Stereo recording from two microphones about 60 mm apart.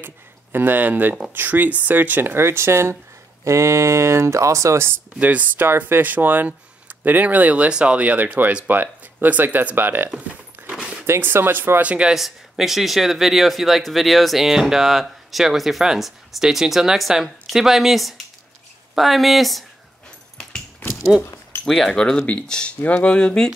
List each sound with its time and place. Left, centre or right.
0.0 s speech: right
3.4 s speech: right
5.2 s speech: right
5.7 s speech: right
11.8 s speech: right
12.1 s speech: centre
21.6 s speech: centre